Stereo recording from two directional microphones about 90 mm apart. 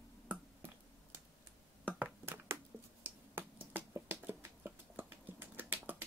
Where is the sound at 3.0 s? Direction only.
20° right (ahead or behind).